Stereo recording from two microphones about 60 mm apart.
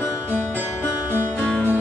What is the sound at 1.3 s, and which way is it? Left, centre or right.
Music, centre.